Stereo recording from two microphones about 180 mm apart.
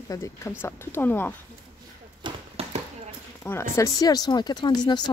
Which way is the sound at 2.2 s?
35° right (ahead or behind).